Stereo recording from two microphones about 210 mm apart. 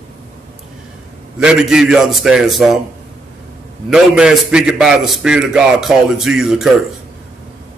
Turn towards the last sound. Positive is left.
turn(degrees=0)  # may be behind; listen again after turning